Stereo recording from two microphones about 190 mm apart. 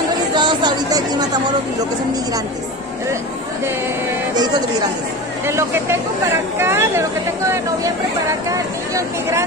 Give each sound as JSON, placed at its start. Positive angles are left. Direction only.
{"t": 0.4, "sound": "chatter", "side_deg": -25}
{"t": 5.5, "sound": "speech", "side_deg": -15}